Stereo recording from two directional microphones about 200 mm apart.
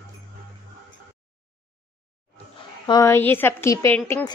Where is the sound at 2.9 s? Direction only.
15° left (ahead or behind).